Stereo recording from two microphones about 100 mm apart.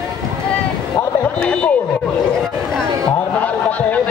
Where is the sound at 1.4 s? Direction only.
15° left (ahead or behind).